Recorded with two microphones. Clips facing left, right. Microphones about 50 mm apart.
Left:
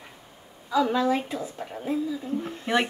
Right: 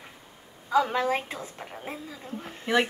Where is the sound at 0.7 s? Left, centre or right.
Right.